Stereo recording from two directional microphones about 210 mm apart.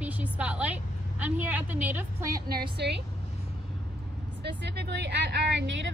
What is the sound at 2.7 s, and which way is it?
Speech, 50° right (ahead or behind).